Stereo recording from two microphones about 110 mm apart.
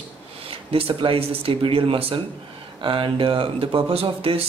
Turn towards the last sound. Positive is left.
turn(degrees=-60)  # may be behind; listen again after turning